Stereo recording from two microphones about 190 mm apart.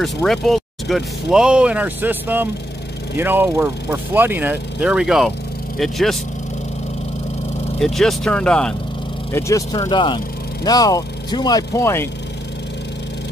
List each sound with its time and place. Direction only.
0.0 s speech: centre (ahead or behind)
7.8 s speech: centre (ahead or behind)
9.3 s speech: 15° left (ahead or behind)